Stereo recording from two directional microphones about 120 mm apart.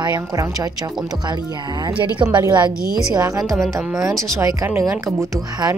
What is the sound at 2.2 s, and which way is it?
A woman's voice, 40° right (ahead or behind).